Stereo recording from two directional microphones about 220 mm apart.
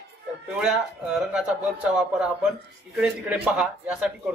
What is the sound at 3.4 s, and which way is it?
Speech, 5° right (ahead or behind).